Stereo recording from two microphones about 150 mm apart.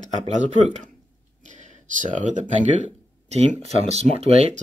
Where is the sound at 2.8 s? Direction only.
50° right (ahead or behind).